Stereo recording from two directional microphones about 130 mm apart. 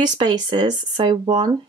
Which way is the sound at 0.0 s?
35° right (ahead or behind).